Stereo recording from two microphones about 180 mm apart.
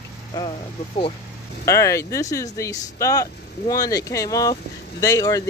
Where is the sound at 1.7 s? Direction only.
15° left (ahead or behind).